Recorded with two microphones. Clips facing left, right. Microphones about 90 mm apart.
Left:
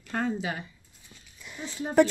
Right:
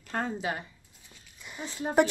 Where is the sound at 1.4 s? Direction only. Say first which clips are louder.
Even; 5° right (ahead or behind).